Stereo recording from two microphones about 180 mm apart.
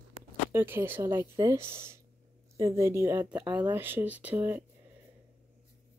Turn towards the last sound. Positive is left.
turn(degrees=-10)  # may be behind; listen again after turning